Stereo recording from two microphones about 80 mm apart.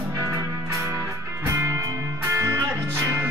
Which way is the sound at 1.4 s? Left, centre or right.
Right.